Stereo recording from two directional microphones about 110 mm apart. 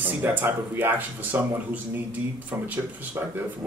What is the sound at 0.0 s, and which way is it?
Speech, 15° right (ahead or behind).